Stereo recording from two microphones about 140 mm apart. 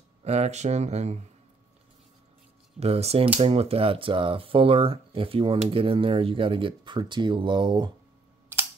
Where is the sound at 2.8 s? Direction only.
45° right (ahead or behind).